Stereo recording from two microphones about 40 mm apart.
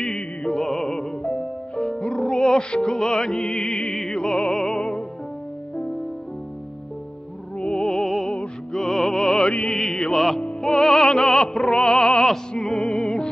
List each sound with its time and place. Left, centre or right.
0.5 s music: centre
1.2 s music: left
7.5 s music: left
8.0 s music: centre; by 12.3 s left
12.5 s opera: centre